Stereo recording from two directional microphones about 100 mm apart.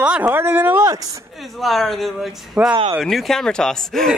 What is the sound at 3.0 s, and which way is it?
Speech, centre (ahead or behind).